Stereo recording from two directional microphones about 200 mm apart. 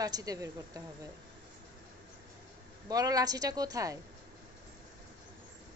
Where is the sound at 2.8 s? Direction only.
20° right (ahead or behind).